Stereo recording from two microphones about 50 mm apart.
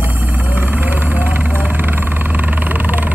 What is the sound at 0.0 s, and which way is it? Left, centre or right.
Vehicle, right.